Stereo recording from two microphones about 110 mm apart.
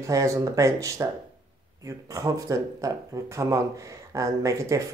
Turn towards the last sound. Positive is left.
turn(degrees=-30)  # may be behind; listen again after turning